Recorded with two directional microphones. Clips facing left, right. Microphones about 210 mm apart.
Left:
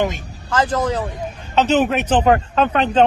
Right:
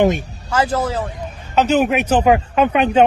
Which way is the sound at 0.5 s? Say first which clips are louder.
Even; 10° right (ahead or behind).